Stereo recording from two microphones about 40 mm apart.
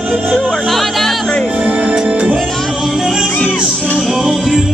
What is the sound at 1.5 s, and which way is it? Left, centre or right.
Music, right.